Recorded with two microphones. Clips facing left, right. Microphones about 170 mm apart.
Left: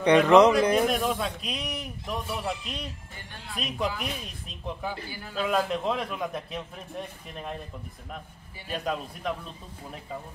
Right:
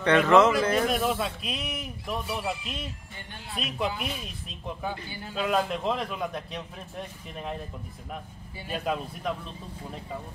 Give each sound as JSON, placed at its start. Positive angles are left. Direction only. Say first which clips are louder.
{"t": 0.0, "sound": "speech", "louder": "left 2 dB", "side_deg": 15}
{"t": 0.8, "sound": "a man's voice", "louder": "even", "side_deg": -5}
{"t": 8.6, "sound": "a man's voice", "louder": "right 1 dB", "side_deg": 0}